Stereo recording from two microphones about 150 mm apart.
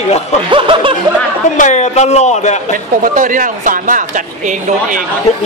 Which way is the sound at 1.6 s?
50° left (ahead or behind).